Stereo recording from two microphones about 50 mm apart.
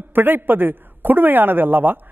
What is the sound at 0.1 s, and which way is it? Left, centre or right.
A man's voice, right.